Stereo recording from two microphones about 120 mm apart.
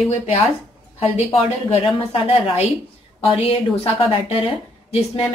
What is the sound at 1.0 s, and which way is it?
A woman's voice, 55° left (ahead or behind).